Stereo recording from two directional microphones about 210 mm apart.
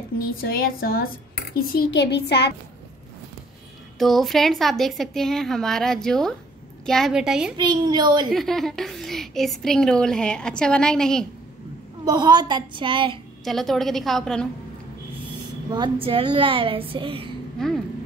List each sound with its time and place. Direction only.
0.4 s speech: 45° left (ahead or behind)
4.0 s a woman's voice: centre (ahead or behind)
7.5 s a woman's voice: 20° right (ahead or behind)
8.3 s a woman's voice: centre (ahead or behind)
12.0 s a woman's voice: 20° right (ahead or behind)
13.4 s a woman's voice: centre (ahead or behind)
15.7 s a woman's voice: 25° right (ahead or behind)
17.6 s a woman's voice: centre (ahead or behind)